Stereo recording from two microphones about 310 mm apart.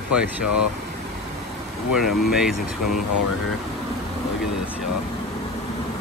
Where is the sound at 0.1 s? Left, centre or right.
Centre.